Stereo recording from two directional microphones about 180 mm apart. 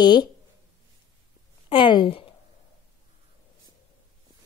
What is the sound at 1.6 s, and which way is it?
Speech, 30° left (ahead or behind).